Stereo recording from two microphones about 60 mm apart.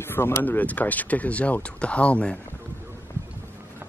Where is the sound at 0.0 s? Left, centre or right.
Left.